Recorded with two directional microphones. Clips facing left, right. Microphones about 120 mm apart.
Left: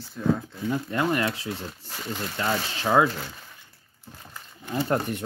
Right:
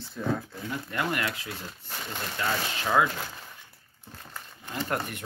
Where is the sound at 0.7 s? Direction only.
25° left (ahead or behind).